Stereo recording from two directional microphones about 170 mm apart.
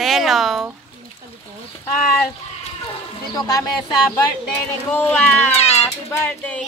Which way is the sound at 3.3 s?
20° left (ahead or behind).